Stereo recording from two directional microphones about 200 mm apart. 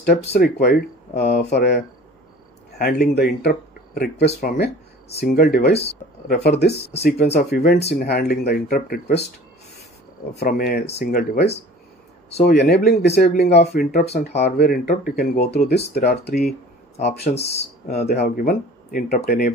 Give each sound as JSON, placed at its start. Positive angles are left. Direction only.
{"t": 0.1, "sound": "speech", "side_deg": 30}
{"t": 0.4, "sound": "speech", "side_deg": 50}
{"t": 2.8, "sound": "speech", "side_deg": 50}
{"t": 6.7, "sound": "speech", "side_deg": 30}
{"t": 7.3, "sound": "speech", "side_deg": 45}
{"t": 10.3, "sound": "speech", "side_deg": 50}
{"t": 17.3, "sound": "speech", "side_deg": 30}
{"t": 18.2, "sound": "speech", "side_deg": 50}